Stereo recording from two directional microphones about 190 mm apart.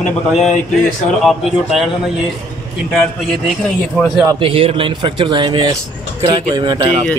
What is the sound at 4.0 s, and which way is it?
Speech, centre (ahead or behind).